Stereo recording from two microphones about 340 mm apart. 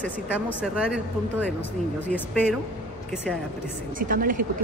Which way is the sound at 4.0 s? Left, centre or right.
Right.